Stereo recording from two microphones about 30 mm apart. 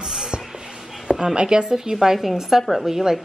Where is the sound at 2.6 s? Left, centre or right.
Centre.